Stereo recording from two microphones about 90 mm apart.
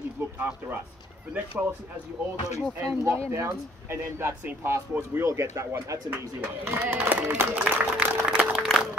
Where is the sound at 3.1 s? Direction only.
30° right (ahead or behind).